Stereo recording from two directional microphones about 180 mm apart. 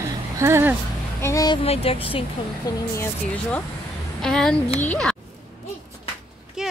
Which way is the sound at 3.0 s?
5° left (ahead or behind).